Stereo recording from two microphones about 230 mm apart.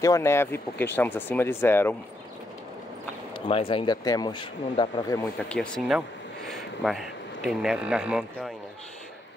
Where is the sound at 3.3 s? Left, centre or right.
Left; by 8.6 s centre.